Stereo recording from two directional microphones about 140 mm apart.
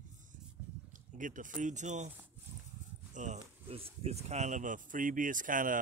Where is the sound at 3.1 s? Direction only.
60° right (ahead or behind).